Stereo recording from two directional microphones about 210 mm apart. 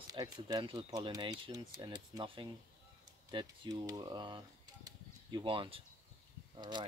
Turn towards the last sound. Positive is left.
turn(degrees=-20)  # may be behind; listen again after turning